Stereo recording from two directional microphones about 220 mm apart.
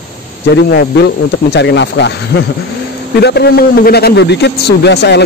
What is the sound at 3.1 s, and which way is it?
A man's voice, 50° left (ahead or behind).